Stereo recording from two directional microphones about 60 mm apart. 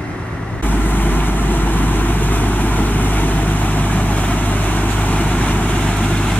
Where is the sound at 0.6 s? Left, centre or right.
Left.